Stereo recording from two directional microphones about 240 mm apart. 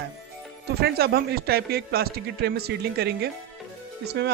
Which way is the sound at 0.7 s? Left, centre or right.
Right.